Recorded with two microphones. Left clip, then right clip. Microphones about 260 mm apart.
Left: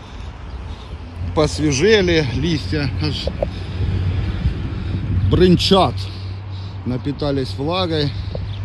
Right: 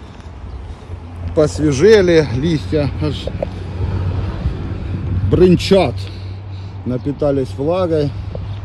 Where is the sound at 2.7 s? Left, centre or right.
Right.